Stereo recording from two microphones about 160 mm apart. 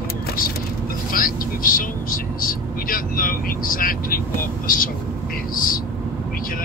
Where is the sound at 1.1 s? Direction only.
60° left (ahead or behind).